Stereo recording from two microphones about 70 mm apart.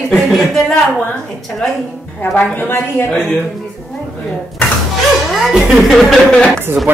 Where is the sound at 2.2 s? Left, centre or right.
Left.